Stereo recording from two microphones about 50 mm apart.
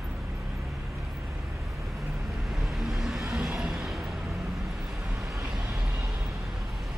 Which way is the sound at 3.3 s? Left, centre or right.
Centre.